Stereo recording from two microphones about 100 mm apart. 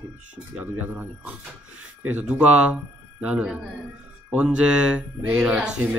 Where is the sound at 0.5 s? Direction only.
15° right (ahead or behind).